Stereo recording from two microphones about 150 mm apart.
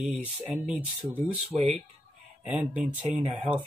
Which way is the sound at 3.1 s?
50° right (ahead or behind).